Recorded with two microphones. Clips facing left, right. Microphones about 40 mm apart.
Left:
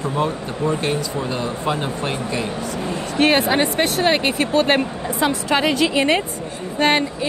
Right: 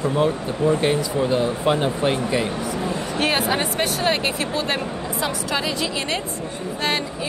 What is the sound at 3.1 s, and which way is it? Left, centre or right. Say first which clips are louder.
Speech: left 6 dB; left.